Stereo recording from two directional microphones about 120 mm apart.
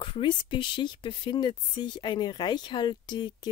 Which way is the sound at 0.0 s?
45° left (ahead or behind).